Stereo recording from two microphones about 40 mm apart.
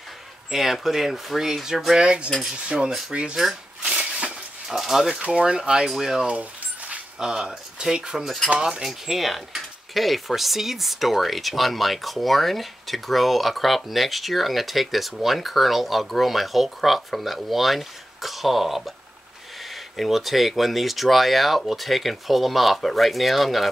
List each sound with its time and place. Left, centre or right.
0.5 s speech: centre
2.0 s speech: right
3.8 s a sound: right
4.6 s speech: centre